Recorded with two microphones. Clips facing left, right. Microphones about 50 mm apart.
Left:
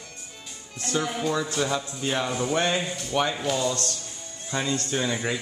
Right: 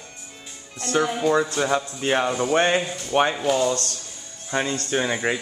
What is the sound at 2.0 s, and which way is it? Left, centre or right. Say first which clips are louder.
Speech: right 4 dB; right.